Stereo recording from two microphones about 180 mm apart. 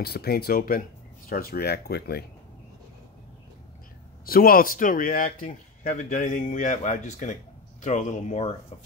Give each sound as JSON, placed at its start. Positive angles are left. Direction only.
{"t": 0.0, "sound": "speech", "side_deg": 60}
{"t": 4.3, "sound": "speech", "side_deg": 55}